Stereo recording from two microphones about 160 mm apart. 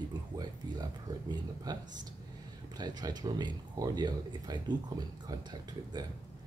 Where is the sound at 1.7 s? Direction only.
25° right (ahead or behind).